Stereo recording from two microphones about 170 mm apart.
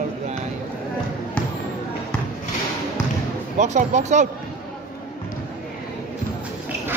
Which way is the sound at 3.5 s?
45° right (ahead or behind).